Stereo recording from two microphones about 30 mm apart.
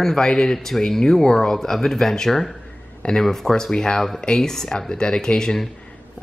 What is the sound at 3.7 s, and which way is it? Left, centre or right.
Speech, left.